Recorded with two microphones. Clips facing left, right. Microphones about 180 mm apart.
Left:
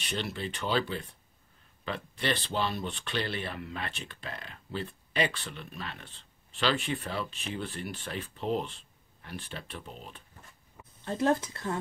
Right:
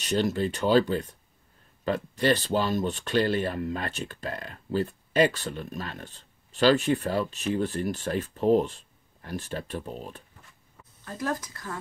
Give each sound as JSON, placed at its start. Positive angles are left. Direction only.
{"t": 0.0, "sound": "speech", "side_deg": -45}
{"t": 11.1, "sound": "speech", "side_deg": 25}